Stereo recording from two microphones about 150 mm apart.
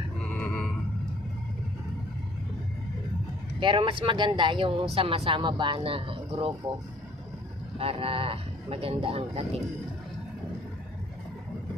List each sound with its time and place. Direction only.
0.3 s a sound: 10° left (ahead or behind)
3.5 s speech: 35° right (ahead or behind)
7.8 s speech: 40° right (ahead or behind)